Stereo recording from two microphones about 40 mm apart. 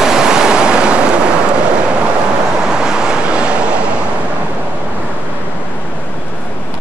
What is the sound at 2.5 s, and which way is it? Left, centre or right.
Waves, centre.